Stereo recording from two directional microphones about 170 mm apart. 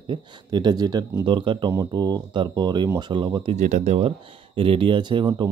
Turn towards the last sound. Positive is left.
turn(degrees=-25)  # may be behind; listen again after turning